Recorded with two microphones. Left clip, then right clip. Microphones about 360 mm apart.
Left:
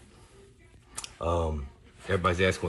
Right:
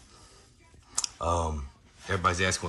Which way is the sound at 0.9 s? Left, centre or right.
Centre.